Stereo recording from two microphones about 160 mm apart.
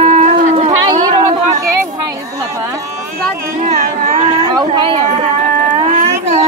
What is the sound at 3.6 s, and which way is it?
Music, 55° right (ahead or behind).